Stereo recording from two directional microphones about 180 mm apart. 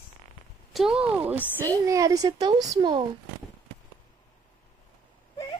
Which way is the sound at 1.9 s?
20° right (ahead or behind).